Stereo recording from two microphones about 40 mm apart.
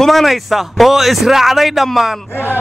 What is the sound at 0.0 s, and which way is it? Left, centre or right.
Speech, centre.